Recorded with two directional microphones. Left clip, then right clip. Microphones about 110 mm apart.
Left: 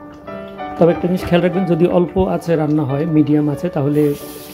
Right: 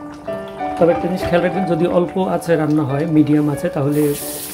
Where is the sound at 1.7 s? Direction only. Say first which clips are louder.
Left 3 dB; 35° left (ahead or behind).